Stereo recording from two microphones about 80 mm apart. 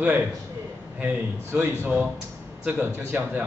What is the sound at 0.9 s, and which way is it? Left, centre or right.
Snicker, centre.